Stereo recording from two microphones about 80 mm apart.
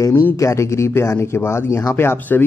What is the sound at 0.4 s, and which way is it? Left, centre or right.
A man's voice, left.